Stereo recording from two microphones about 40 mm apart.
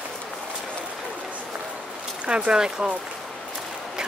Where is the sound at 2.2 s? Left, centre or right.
Right.